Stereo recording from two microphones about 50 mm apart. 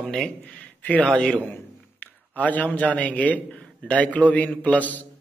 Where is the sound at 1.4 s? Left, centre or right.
Left.